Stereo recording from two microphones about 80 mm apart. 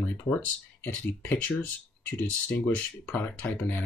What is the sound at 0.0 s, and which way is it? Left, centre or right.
Speech, left.